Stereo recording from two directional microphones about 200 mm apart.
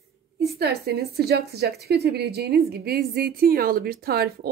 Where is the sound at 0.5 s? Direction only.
50° right (ahead or behind).